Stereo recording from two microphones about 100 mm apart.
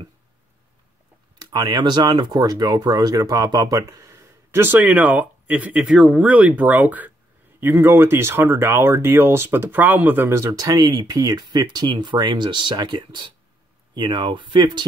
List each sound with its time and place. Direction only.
1.4 s speech: 40° right (ahead or behind)